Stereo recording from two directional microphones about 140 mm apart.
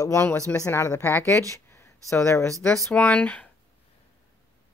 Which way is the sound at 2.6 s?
5° left (ahead or behind).